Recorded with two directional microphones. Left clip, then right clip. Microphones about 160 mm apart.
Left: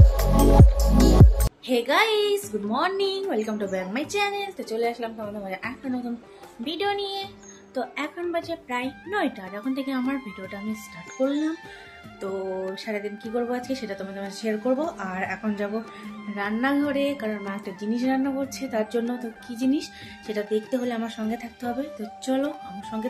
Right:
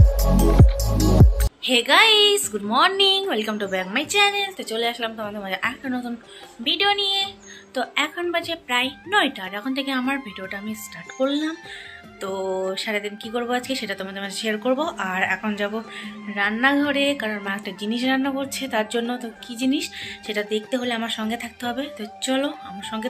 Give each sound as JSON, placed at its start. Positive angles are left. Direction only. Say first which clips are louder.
{"t": 0.1, "sound": "a woman's voice", "louder": "left 1 dB", "side_deg": 0}